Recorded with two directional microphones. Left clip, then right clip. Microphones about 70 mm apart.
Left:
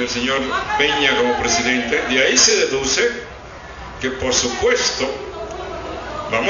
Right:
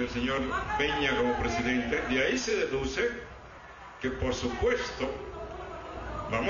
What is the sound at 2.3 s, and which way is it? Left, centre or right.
A man's voice, centre.